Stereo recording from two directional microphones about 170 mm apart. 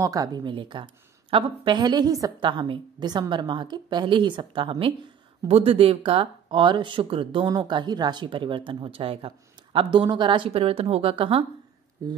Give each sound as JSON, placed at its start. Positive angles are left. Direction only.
{"t": 0.0, "sound": "a woman's voice", "side_deg": -20}
{"t": 12.0, "sound": "a woman's voice", "side_deg": -20}